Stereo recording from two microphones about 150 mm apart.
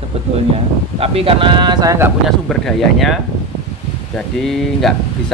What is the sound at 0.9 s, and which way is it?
Speech, 40° right (ahead or behind).